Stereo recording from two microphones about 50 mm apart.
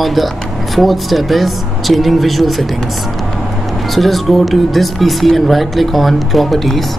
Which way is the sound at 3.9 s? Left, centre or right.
Centre.